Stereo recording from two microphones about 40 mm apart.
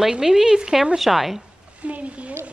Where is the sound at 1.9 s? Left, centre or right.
Right.